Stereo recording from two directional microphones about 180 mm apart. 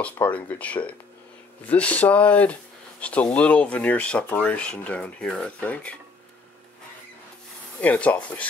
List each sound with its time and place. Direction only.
0.0 s speech: 10° left (ahead or behind)
7.8 s speech: 10° left (ahead or behind)